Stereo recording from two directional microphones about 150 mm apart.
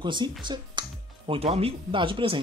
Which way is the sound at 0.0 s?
30° right (ahead or behind).